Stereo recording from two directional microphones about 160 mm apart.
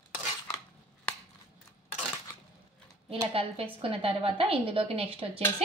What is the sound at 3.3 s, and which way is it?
Speech, 35° right (ahead or behind).